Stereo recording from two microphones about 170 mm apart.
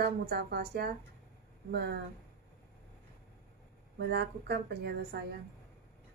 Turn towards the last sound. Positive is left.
turn(degrees=-70)  # may be behind; listen again after turning